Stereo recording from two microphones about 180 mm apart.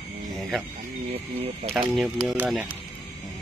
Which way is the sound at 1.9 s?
5° right (ahead or behind).